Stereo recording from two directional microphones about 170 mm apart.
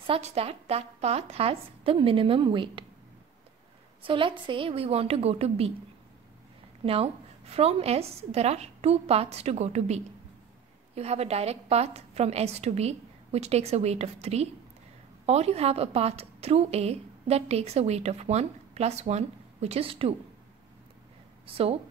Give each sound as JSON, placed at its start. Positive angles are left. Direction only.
{"t": 0.0, "sound": "a woman's voice", "side_deg": -35}
{"t": 4.0, "sound": "a woman's voice", "side_deg": -30}
{"t": 6.8, "sound": "a woman's voice", "side_deg": -35}